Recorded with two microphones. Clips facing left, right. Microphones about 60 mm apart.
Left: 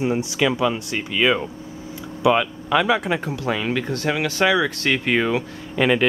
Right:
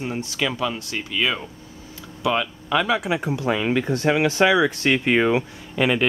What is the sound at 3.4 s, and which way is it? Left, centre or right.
Speech, centre.